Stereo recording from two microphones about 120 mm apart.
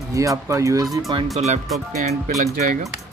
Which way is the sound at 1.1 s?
40° right (ahead or behind).